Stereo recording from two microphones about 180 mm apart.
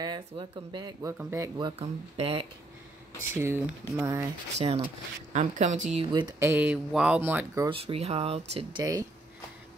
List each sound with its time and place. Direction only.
0.0 s speech: 25° right (ahead or behind)
1.8 s speech: 35° right (ahead or behind)
3.3 s speech: 15° right (ahead or behind)
4.6 s speech: 35° right (ahead or behind)
5.9 s speech: 25° right (ahead or behind)
6.4 s speech: 10° right (ahead or behind)
7.7 s speech: 35° right (ahead or behind)